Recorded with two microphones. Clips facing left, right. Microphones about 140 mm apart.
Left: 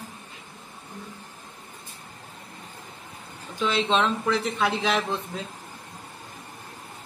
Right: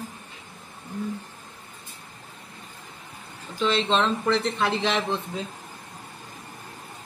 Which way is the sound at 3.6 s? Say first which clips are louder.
Right 1 dB; 5° left (ahead or behind).